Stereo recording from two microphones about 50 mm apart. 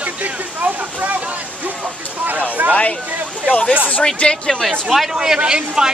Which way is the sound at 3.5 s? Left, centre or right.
Left.